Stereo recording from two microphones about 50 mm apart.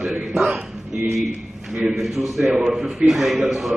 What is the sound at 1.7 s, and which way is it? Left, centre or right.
A man's voice, centre.